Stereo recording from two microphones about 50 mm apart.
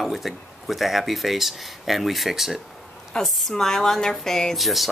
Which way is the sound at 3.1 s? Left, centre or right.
Centre.